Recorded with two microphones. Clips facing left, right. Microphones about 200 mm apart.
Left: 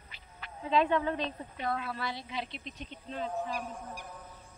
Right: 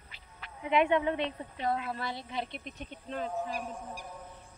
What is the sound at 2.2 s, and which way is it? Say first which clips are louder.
Speech: right 2 dB; 50° right (ahead or behind).